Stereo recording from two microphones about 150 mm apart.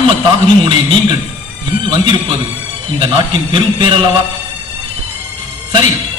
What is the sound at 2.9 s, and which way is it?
A man's voice, 30° right (ahead or behind).